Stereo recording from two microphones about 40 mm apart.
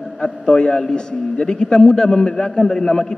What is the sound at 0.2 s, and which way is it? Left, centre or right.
A man's voice, centre.